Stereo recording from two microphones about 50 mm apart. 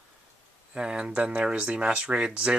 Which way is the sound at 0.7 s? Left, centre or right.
Centre.